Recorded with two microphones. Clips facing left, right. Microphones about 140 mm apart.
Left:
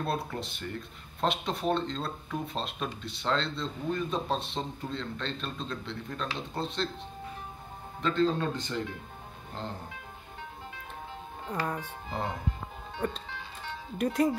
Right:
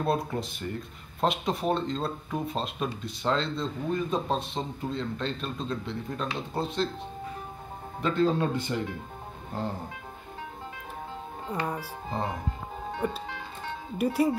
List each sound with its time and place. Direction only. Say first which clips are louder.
0.0 s speech: right 5 dB; centre (ahead or behind)
8.0 s speech: right 2 dB; 10° right (ahead or behind)
11.5 s speech: right 1 dB; 10° right (ahead or behind)
11.8 s speech: right 3 dB; 30° right (ahead or behind)
13.0 s speech: right 1 dB; 10° right (ahead or behind)